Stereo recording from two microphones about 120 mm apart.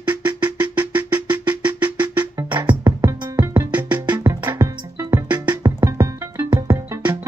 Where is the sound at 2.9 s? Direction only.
25° right (ahead or behind).